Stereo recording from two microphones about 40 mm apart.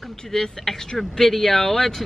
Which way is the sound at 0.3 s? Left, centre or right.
Centre.